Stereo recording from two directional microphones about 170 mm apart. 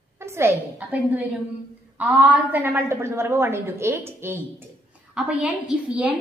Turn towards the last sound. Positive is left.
turn(degrees=-10)  # may be behind; listen again after turning